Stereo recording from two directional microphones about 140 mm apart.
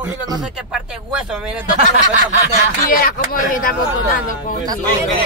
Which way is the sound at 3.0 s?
90° left.